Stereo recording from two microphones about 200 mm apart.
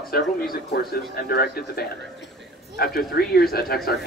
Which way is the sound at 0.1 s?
50° left (ahead or behind).